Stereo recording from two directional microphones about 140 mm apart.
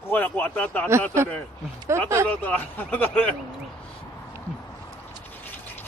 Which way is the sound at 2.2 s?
10° left (ahead or behind).